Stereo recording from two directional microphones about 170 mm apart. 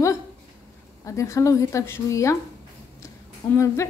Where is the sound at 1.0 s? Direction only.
20° left (ahead or behind).